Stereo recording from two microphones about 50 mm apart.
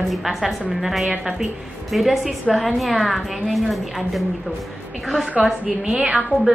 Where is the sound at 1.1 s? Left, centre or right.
Centre.